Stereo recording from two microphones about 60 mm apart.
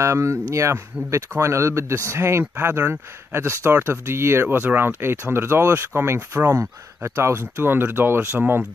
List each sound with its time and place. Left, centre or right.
0.0 s speech: right